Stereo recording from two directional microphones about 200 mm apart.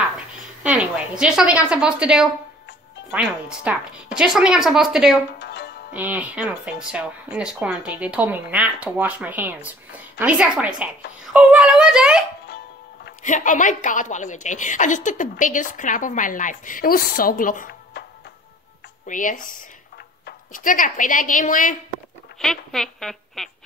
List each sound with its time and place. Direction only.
0.7 s a woman's voice: 5° right (ahead or behind)
5.4 s music: 55° left (ahead or behind)
5.9 s a woman's voice: 10° right (ahead or behind)
13.2 s a woman's voice: 40° left (ahead or behind)
19.0 s a woman's voice: 40° left (ahead or behind)
22.4 s a woman's voice: centre (ahead or behind)